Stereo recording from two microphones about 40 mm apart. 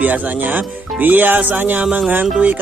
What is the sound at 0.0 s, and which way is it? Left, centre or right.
Speech, right.